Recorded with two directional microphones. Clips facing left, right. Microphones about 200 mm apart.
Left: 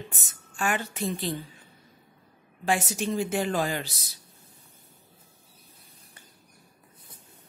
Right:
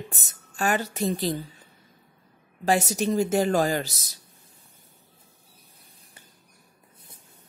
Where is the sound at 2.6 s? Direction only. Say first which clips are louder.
Right 4 dB; 40° right (ahead or behind).